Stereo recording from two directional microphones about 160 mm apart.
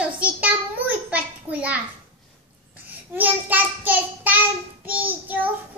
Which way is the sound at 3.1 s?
10° right (ahead or behind).